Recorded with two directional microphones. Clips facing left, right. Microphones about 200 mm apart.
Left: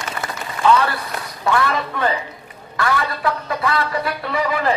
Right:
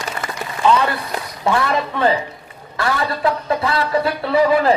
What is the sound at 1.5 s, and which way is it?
A man's voice, 25° right (ahead or behind).